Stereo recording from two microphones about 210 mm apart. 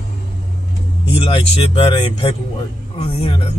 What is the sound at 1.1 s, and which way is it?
Speech, 25° left (ahead or behind).